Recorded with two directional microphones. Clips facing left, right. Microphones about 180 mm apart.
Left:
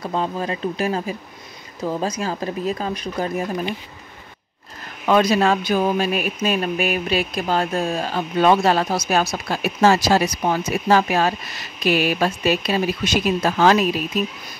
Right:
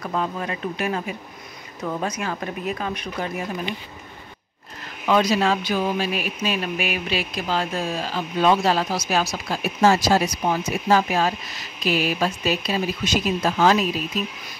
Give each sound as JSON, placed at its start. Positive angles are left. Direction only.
{"t": 0.0, "sound": "speech", "side_deg": 30}
{"t": 5.0, "sound": "speech", "side_deg": 55}